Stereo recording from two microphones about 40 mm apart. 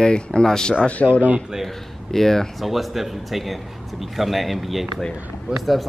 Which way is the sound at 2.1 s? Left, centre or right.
Centre.